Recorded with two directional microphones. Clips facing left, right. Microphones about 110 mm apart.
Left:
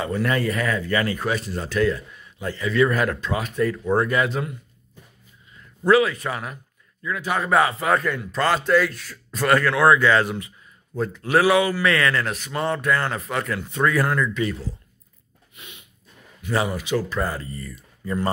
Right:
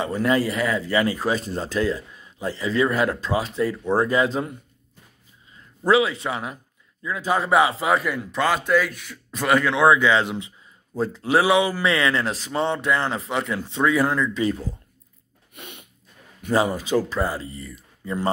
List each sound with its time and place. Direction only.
0.0 s speech: 25° right (ahead or behind)
5.9 s speech: 25° right (ahead or behind)
7.2 s speech: 30° right (ahead or behind)
7.4 s speech: 20° right (ahead or behind)
7.9 s a man's voice: 5° right (ahead or behind); by 14.6 s 30° right (ahead or behind)
15.5 s a sound: 65° right (ahead or behind)
16.5 s speech: 35° right (ahead or behind); by 18.3 s 15° right (ahead or behind)